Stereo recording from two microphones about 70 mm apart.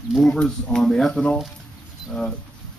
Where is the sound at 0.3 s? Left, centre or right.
Centre.